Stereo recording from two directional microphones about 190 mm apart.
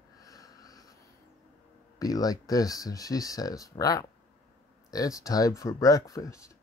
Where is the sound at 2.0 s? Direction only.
20° left (ahead or behind).